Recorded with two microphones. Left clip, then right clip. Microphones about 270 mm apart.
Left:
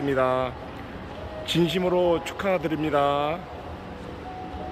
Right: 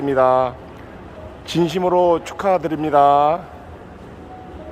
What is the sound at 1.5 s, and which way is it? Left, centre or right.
Speech, centre.